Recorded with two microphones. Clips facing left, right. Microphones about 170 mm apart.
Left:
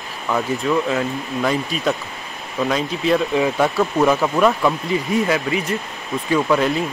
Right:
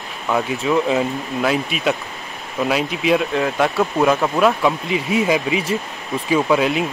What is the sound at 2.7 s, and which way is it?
Speech, 10° right (ahead or behind).